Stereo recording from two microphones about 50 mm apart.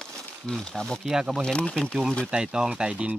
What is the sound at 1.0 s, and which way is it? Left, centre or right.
Speech, centre.